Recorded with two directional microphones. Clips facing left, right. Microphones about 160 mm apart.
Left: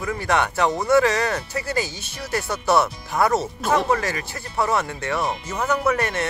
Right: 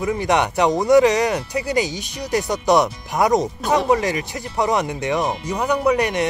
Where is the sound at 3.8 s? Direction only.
20° right (ahead or behind).